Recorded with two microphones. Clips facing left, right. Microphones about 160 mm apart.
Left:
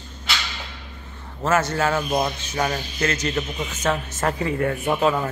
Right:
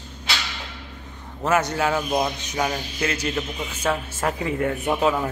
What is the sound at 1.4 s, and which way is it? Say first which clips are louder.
A man's voice: even; 15° right (ahead or behind).